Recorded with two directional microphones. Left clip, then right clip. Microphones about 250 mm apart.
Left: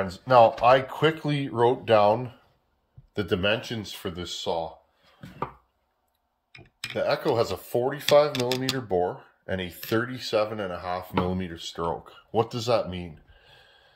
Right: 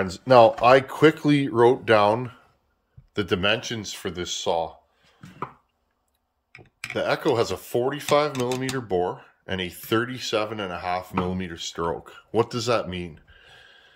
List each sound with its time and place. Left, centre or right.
0.0 s speech: right; by 4.6 s centre
6.9 s speech: centre
12.3 s gasp: centre